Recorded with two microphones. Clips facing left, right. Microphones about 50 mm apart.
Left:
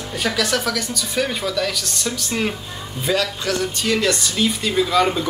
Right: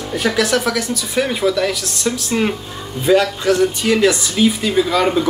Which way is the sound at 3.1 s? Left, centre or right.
Right.